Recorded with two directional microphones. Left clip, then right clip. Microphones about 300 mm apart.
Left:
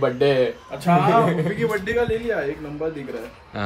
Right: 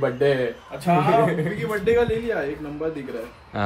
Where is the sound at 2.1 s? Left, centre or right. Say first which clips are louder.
Left 1 dB; centre.